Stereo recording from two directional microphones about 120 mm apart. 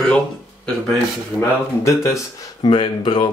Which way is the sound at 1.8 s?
25° left (ahead or behind).